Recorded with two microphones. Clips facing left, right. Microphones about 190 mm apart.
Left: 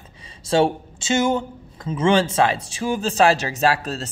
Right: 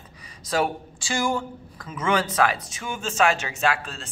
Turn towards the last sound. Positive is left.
turn(degrees=40)  # may be behind; listen again after turning